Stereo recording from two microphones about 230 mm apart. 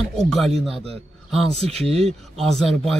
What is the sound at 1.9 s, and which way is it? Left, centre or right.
Speech, right.